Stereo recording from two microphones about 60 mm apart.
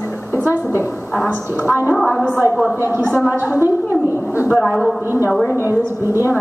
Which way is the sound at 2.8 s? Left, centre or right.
Right.